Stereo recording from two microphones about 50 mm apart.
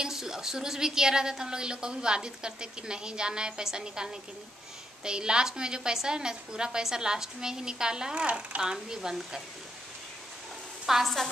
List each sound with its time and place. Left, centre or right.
0.0 s speech: centre
10.9 s a woman's voice: centre